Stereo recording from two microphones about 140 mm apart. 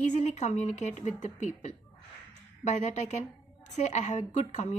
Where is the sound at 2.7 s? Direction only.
55° left (ahead or behind).